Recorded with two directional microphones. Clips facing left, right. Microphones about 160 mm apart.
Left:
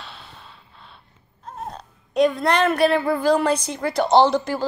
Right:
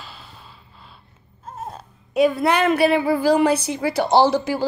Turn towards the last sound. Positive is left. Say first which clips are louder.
# even
turn(degrees=-10)  # may be behind; listen again after turning